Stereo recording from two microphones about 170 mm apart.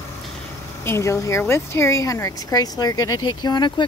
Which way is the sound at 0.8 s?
15° left (ahead or behind).